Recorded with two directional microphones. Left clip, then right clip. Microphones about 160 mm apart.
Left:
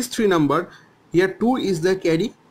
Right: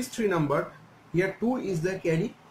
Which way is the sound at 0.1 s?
50° left (ahead or behind).